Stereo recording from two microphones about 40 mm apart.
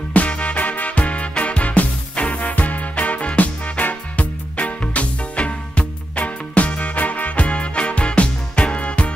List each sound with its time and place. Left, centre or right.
0.1 s music: left